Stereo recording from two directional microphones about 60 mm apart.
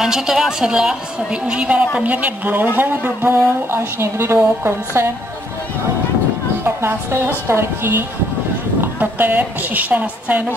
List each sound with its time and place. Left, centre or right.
0.0 s a woman's voice: centre; by 5.0 s right
6.6 s speech: right
8.8 s a woman's voice: right